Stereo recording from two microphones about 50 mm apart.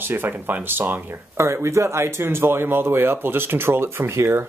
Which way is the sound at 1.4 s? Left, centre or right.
Right.